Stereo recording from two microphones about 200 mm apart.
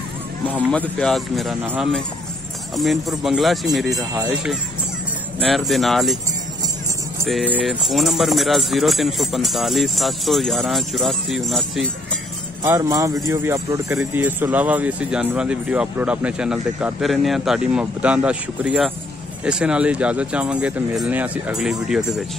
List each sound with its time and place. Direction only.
0.7 s speech: 5° left (ahead or behind)
7.2 s speech: centre (ahead or behind)
12.6 s speech: 15° right (ahead or behind)